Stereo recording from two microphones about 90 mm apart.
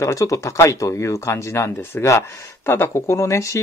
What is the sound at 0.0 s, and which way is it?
Speech, 35° left (ahead or behind).